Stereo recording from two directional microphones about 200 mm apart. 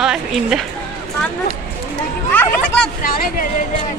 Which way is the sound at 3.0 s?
45° left (ahead or behind).